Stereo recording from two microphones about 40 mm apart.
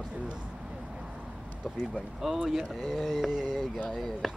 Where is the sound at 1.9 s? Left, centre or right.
Centre.